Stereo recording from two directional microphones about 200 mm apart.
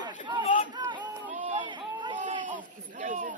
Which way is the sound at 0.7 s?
20° right (ahead or behind).